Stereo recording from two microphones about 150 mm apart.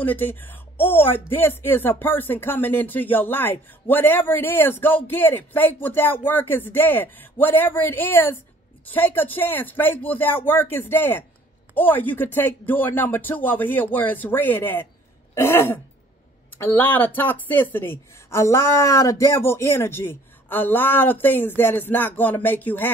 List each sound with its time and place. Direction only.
0.0 s speech: 10° left (ahead or behind)